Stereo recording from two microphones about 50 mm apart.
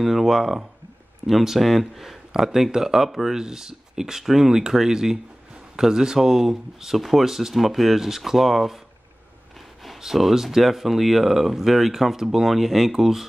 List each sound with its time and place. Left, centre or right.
0.0 s speech: centre
9.8 s speech: centre